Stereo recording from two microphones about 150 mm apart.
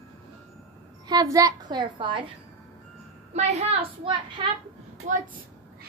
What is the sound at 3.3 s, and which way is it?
A woman's voice, 45° right (ahead or behind).